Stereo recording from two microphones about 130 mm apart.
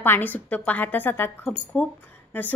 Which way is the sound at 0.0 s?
15° left (ahead or behind).